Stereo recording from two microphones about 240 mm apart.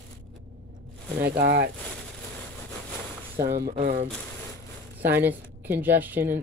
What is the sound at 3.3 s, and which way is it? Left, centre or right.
Speech, right.